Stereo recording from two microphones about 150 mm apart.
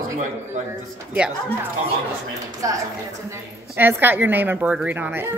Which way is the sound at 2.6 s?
20° right (ahead or behind).